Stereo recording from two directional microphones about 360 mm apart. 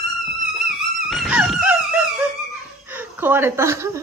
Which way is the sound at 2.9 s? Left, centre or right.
Centre.